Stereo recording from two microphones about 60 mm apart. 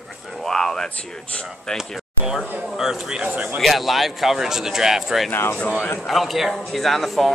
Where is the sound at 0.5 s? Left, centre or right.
Centre.